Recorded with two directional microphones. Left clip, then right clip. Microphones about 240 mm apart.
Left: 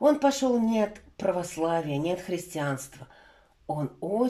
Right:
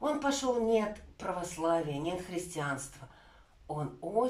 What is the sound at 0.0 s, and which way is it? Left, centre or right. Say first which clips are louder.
Speech: left 9 dB; left.